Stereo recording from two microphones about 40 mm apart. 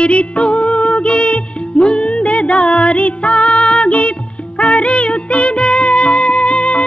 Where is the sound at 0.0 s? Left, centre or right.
Left.